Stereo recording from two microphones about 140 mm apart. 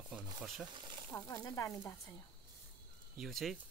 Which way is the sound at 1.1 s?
20° left (ahead or behind).